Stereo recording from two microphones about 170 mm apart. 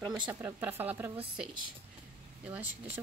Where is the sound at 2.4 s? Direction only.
10° right (ahead or behind).